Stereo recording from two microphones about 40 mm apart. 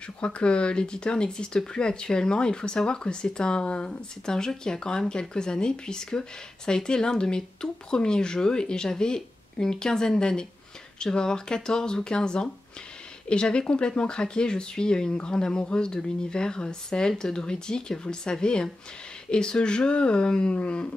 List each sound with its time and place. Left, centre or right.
0.2 s speech: left